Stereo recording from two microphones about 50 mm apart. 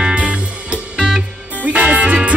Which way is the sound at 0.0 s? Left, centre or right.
Right.